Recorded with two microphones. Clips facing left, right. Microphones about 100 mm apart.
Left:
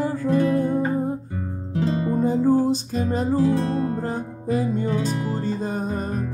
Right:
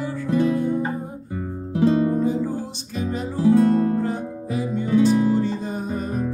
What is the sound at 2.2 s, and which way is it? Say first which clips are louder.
Music: left 5 dB; 40° left (ahead or behind).